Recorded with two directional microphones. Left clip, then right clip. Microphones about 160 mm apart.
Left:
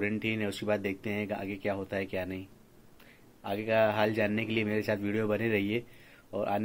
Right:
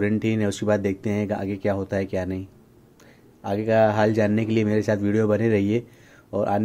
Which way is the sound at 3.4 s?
35° right (ahead or behind).